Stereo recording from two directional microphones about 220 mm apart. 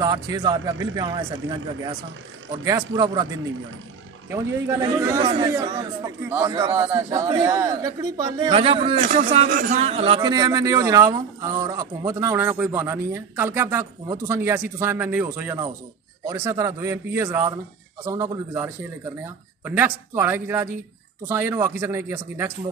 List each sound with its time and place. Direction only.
0.0 s a man's voice: 20° right (ahead or behind)
2.6 s a man's voice: 15° right (ahead or behind)
4.3 s a man's voice: 15° right (ahead or behind)
8.9 s a man's voice: 35° right (ahead or behind); by 22.5 s 10° right (ahead or behind)